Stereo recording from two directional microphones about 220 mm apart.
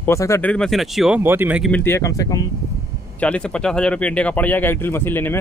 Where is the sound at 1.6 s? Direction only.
10° left (ahead or behind).